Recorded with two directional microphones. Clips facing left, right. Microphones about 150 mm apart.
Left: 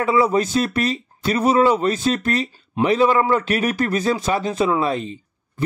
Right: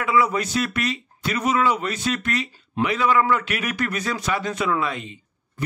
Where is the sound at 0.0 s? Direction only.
30° left (ahead or behind).